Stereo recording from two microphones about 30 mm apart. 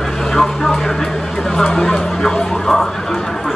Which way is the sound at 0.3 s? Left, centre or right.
Centre.